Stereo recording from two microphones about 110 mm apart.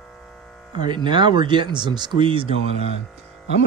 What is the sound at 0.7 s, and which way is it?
Speech, 45° right (ahead or behind).